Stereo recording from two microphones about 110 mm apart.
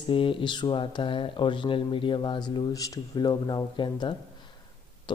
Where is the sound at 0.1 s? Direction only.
50° left (ahead or behind).